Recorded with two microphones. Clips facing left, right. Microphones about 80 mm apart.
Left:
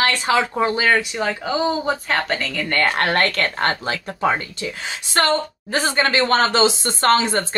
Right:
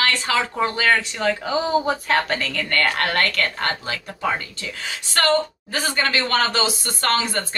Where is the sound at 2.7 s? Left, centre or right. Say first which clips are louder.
Left 3 dB; left.